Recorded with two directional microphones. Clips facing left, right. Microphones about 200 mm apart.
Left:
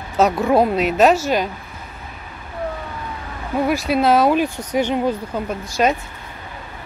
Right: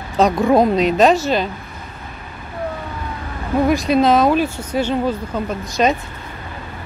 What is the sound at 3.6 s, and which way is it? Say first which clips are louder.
Speech: right 2 dB; 5° left (ahead or behind).